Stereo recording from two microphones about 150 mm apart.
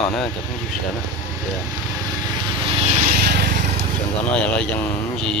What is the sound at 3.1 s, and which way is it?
Vehicle, 90° right.